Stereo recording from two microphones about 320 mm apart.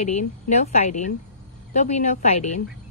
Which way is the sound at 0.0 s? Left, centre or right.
Left.